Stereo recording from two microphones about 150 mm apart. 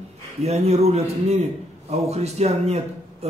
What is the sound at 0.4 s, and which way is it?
Speech, 45° right (ahead or behind).